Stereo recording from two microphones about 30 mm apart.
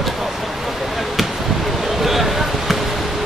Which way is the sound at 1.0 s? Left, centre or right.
Centre.